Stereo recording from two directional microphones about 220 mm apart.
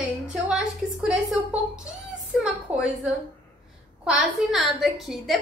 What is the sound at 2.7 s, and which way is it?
A woman's voice, 5° right (ahead or behind).